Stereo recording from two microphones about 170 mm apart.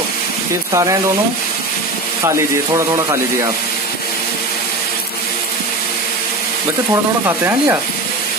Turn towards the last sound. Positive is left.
turn(degrees=-15)  # may be behind; listen again after turning